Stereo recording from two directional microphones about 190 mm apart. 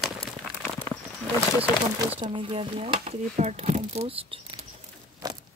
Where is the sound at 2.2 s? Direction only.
25° right (ahead or behind).